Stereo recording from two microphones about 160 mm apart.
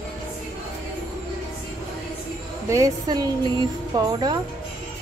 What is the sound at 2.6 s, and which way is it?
Speech, 20° right (ahead or behind).